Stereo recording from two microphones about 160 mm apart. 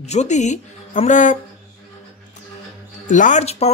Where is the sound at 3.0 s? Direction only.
50° left (ahead or behind).